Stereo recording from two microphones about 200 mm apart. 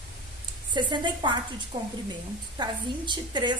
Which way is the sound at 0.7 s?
25° right (ahead or behind).